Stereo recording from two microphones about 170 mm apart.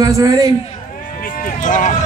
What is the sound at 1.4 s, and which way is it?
Speech, 50° left (ahead or behind).